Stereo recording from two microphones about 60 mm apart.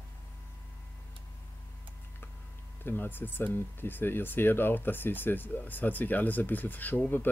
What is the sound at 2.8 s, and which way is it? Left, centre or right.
Speech, left.